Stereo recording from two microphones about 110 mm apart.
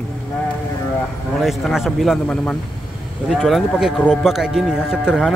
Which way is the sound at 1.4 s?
Centre (ahead or behind).